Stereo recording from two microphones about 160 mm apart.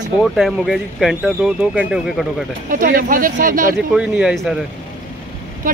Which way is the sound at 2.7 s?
60° right (ahead or behind).